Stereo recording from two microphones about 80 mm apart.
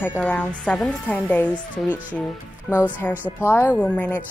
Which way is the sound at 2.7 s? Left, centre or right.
Left.